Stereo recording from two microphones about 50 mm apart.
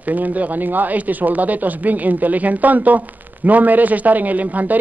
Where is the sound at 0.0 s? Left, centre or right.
Right.